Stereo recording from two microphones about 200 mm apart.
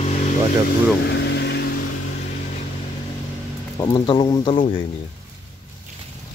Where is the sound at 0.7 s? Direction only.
60° left (ahead or behind).